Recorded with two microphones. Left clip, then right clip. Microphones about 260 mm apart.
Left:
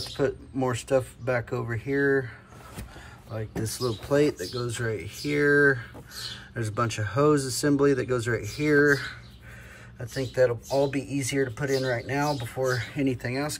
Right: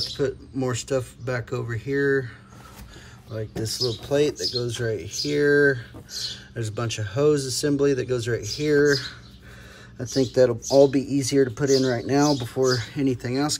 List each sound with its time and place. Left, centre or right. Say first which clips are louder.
0.2 s speech: left 2 dB; centre
3.3 s speech: right 5 dB; centre
9.9 s speech: right 5 dB; centre